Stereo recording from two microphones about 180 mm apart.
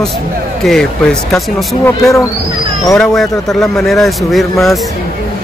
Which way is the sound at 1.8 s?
15° left (ahead or behind).